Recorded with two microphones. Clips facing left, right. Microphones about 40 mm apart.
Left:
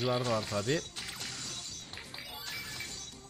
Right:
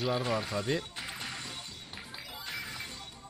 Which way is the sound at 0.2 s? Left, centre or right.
Centre.